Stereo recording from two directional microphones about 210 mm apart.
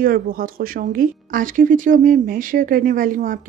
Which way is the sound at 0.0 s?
45° right (ahead or behind).